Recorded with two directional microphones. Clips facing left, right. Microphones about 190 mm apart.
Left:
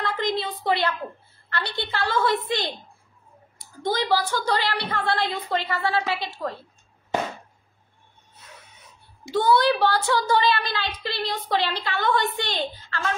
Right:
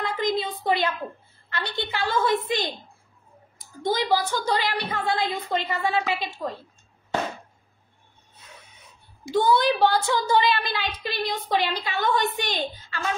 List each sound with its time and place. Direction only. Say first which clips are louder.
0.0 s a sound: right 1 dB; 15° right (ahead or behind)
1.5 s a woman's voice: left 1 dB; 15° right (ahead or behind)
3.9 s a woman's voice: even; 15° right (ahead or behind)
9.3 s a woman's voice: left 1 dB; 15° right (ahead or behind)